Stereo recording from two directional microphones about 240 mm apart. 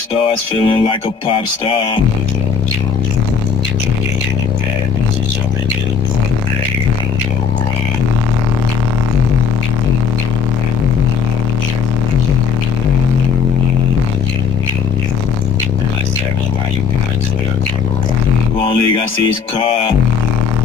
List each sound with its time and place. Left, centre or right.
0.7 s music: left